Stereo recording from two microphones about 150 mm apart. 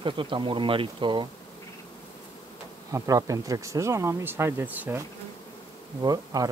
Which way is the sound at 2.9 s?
20° right (ahead or behind).